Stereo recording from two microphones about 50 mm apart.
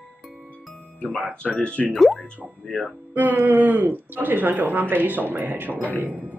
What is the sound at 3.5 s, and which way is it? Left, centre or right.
Speech, right.